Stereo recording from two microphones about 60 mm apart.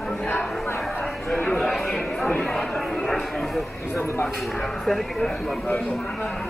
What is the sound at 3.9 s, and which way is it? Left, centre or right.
Speech, left.